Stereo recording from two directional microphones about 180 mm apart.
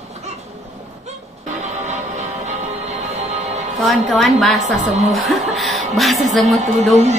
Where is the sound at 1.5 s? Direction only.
40° right (ahead or behind).